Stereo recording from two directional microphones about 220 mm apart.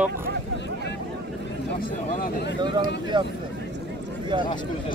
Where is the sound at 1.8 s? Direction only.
40° left (ahead or behind).